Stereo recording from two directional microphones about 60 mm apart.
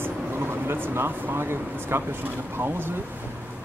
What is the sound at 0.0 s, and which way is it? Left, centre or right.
Speech, right.